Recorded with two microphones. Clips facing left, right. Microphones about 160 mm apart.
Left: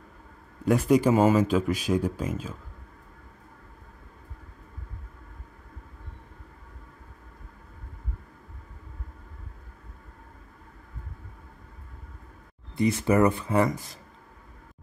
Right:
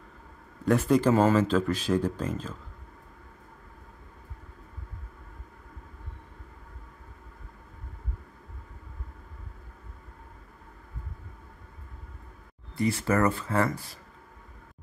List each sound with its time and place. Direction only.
0.7 s speech: 10° left (ahead or behind)
12.7 s speech: 20° left (ahead or behind)